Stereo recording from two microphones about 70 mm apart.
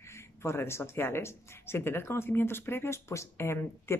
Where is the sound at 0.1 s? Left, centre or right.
Left.